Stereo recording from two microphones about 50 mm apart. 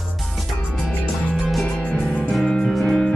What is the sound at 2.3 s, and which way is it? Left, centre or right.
Music, centre.